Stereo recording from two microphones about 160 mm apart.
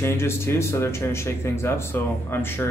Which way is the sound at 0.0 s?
15° left (ahead or behind).